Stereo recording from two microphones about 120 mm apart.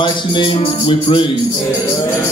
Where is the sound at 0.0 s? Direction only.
45° left (ahead or behind).